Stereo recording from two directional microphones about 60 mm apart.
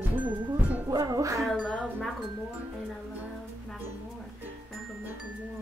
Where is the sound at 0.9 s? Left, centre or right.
Right.